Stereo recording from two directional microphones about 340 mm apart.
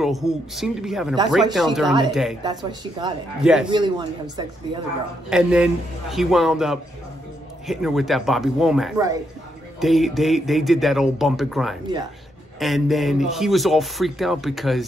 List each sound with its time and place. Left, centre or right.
0.0 s speech: centre
2.4 s speech: centre
5.3 s speech: centre